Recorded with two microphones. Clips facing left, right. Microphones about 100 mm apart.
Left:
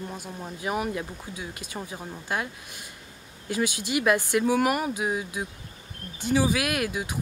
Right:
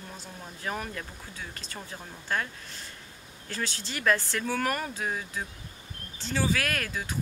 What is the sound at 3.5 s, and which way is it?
Speech, 15° left (ahead or behind).